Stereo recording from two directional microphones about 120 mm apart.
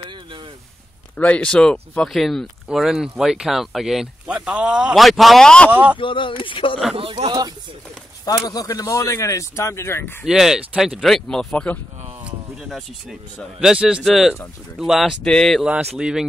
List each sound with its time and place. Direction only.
1.1 s speech: 10° left (ahead or behind)
5.7 s speech: 15° right (ahead or behind)
5.9 s speech: 45° left (ahead or behind)
7.0 s speech: 45° right (ahead or behind)
8.3 s speech: 30° left (ahead or behind)
10.2 s speech: 5° right (ahead or behind)
12.3 s speech: centre (ahead or behind)
15.6 s speech: 5° right (ahead or behind)